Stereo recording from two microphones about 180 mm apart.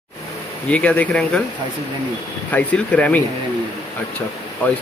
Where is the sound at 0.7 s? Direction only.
5° left (ahead or behind).